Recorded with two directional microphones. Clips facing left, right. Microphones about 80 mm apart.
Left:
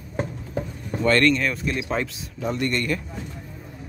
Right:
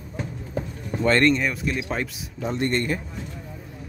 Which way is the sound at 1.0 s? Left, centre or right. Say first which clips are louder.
Even; right.